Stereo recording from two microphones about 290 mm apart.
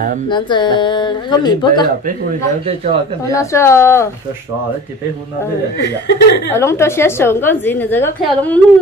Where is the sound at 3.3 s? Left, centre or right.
Centre.